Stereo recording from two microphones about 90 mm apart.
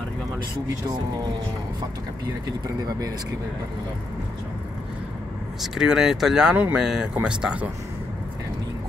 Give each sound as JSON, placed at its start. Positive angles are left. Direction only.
{"t": 5.6, "sound": "speech", "side_deg": -5}